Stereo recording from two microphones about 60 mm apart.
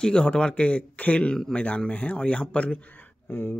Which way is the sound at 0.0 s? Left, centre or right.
Centre.